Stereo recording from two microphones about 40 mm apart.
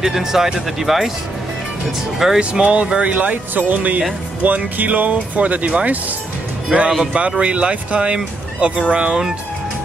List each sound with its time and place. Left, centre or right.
0.0 s speech: centre
2.1 s speech: centre
2.5 s speech: right